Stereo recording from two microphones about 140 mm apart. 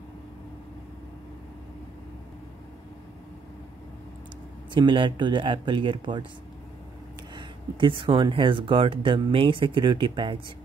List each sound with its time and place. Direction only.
4.7 s speech: 35° right (ahead or behind)
7.3 s speech: 35° right (ahead or behind)